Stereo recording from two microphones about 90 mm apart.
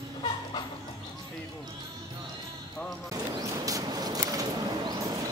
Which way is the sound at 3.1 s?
40° right (ahead or behind).